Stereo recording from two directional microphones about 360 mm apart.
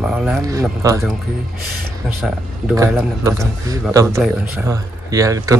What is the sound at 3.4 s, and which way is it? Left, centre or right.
Speech, centre.